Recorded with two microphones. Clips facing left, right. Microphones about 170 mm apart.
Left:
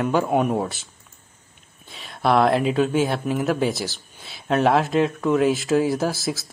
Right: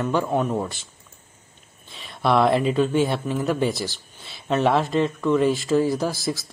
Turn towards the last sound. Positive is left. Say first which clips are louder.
# left 1 dB
turn(degrees=5)  # may be behind; listen again after turning